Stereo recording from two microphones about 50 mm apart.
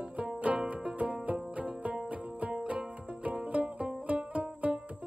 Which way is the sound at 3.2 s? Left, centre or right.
Right.